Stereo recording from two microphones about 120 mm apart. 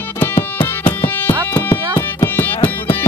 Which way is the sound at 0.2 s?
15° left (ahead or behind).